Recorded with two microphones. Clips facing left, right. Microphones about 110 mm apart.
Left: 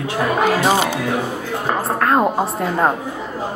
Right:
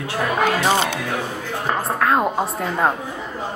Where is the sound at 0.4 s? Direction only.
5° left (ahead or behind).